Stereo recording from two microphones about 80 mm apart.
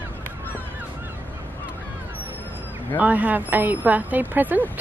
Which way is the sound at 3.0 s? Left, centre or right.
Right.